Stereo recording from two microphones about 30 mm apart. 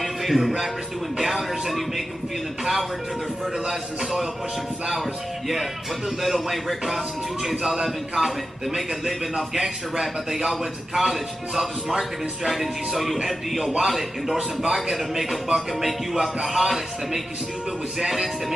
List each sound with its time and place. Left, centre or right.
0.0 s music: centre
1.1 s a man's voice: centre
5.5 s a man's voice: centre
7.4 s a man's voice: centre
9.5 s a man's voice: centre